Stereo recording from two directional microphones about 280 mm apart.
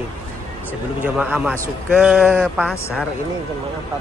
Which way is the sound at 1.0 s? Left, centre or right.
Centre.